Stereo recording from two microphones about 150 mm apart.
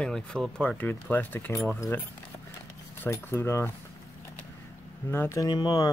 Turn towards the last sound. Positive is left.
turn(degrees=25)  # may be behind; listen again after turning